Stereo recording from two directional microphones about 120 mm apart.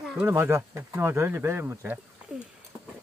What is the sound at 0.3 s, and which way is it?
Speech, 20° right (ahead or behind).